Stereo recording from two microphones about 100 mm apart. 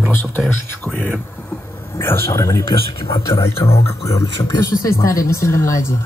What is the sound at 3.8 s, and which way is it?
Speech, 30° left (ahead or behind).